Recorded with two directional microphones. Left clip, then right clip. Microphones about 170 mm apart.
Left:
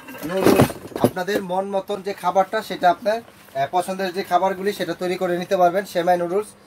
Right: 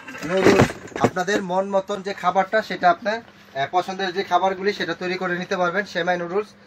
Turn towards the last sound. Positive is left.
turn(degrees=55)  # may be behind; listen again after turning